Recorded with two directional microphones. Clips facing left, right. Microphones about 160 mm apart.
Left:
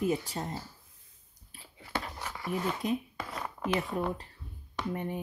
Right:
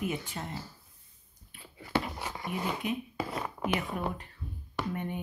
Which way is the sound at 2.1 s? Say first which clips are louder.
Left 1 dB; 20° right (ahead or behind).